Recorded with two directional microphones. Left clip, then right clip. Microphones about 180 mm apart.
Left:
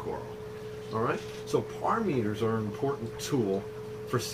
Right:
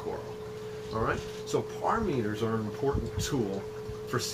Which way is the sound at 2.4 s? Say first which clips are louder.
Left 2 dB; 5° left (ahead or behind).